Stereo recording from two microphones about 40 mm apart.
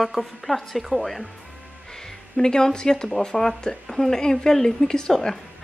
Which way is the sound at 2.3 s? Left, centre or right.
Centre.